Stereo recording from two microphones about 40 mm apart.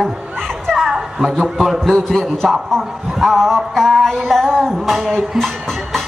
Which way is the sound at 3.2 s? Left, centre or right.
Centre.